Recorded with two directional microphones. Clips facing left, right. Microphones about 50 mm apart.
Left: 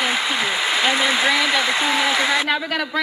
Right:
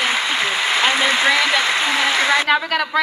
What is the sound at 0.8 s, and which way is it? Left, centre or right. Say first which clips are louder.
Speech: right 2 dB; right.